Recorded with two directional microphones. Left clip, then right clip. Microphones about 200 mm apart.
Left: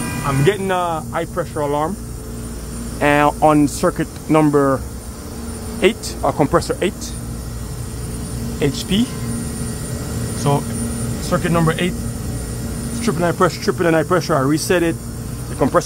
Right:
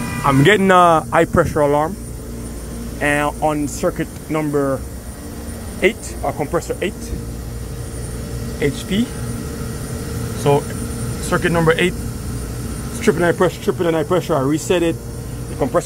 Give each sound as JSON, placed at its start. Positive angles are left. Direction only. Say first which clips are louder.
{"t": 0.4, "sound": "speech", "louder": "right 7 dB", "side_deg": -25}
{"t": 3.0, "sound": "speech", "louder": "left 4 dB", "side_deg": 15}
{"t": 5.8, "sound": "speech", "louder": "left 1 dB", "side_deg": 20}
{"t": 8.5, "sound": "speech", "louder": "left 1 dB", "side_deg": 20}
{"t": 10.4, "sound": "speech", "louder": "right 4 dB", "side_deg": 5}
{"t": 13.0, "sound": "speech", "louder": "right 4 dB", "side_deg": 0}
{"t": 13.7, "sound": "speech", "louder": "left 2 dB", "side_deg": 15}